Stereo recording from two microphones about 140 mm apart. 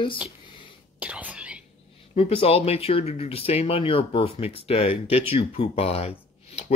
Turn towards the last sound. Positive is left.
turn(degrees=45)  # may be behind; listen again after turning